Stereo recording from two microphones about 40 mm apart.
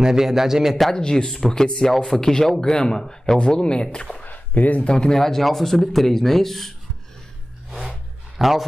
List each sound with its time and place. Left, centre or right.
0.0 s a man's voice: centre
0.9 s speech: centre
4.2 s a sound: left
4.8 s speech: left
8.4 s speech: centre